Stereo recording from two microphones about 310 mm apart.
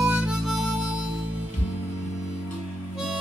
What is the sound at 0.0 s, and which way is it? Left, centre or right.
Harmonica, centre.